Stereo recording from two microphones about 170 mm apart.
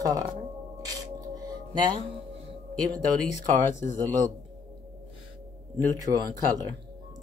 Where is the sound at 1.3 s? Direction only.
25° right (ahead or behind).